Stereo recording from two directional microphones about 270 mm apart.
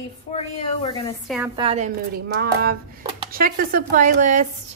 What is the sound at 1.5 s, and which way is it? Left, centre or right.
Speech, right.